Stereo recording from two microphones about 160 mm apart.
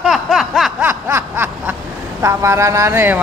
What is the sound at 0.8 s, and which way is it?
Snicker, 15° right (ahead or behind).